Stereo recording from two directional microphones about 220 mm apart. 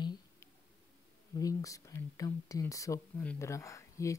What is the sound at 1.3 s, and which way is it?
Speech, 15° left (ahead or behind).